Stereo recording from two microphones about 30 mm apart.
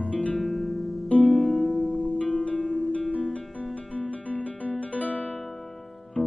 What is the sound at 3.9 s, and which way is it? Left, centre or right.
Guitar, left.